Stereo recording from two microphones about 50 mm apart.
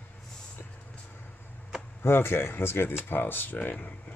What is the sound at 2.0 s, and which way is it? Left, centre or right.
Speech, left.